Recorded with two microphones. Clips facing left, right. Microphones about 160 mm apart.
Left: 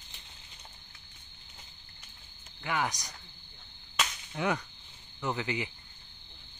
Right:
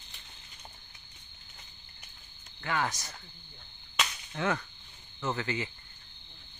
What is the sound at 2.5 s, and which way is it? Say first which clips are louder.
Speech: even; 15° left (ahead or behind).